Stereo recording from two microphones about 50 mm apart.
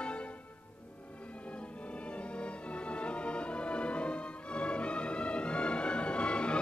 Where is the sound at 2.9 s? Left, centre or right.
Left.